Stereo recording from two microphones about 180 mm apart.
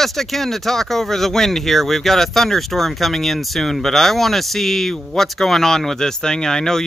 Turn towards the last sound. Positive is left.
turn(degrees=5)  # may be behind; listen again after turning